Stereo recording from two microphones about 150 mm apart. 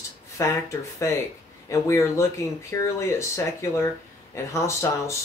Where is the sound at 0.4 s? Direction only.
20° left (ahead or behind).